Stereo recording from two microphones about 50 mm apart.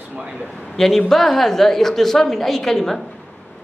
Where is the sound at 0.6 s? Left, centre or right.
Centre.